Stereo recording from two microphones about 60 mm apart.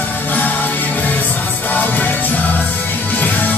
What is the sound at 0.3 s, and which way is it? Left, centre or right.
Music, left.